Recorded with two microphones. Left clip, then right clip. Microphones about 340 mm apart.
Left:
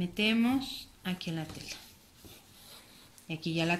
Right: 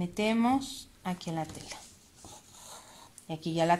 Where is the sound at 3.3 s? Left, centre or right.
Right.